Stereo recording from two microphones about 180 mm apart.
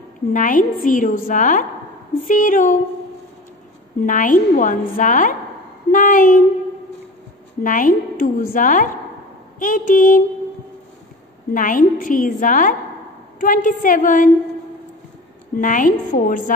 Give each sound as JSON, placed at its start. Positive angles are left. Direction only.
{"t": 0.3, "sound": "a woman's voice", "side_deg": 50}
{"t": 4.0, "sound": "a woman's voice", "side_deg": 50}
{"t": 7.6, "sound": "a woman's voice", "side_deg": 50}
{"t": 11.5, "sound": "a woman's voice", "side_deg": 50}
{"t": 15.5, "sound": "a woman's voice", "side_deg": 50}